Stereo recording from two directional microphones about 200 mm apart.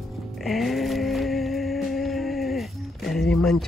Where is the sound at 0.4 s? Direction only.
Centre (ahead or behind).